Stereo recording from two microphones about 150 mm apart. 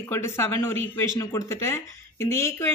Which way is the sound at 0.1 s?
15° left (ahead or behind).